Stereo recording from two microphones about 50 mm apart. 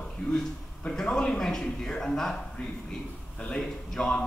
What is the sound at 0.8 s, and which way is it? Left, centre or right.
A man's voice, centre.